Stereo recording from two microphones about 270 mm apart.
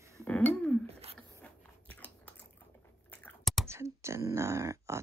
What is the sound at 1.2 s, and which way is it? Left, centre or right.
Biting, centre.